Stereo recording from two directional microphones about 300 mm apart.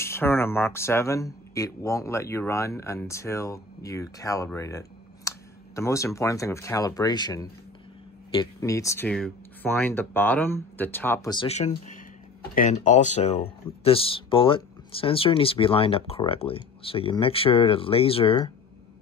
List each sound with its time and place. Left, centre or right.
0.0 s speech: centre